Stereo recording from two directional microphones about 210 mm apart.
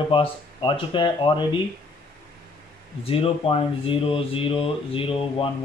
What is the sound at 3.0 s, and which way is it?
Speech, 25° left (ahead or behind).